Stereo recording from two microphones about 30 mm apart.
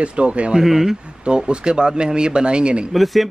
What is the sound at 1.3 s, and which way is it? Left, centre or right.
A man's voice, right.